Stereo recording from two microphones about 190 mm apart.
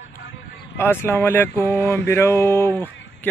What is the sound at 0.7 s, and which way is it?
Speech, 10° left (ahead or behind).